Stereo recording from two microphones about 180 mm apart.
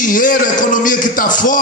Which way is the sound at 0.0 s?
50° left (ahead or behind).